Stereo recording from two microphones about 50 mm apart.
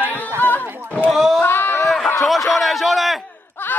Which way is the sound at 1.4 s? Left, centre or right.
Left.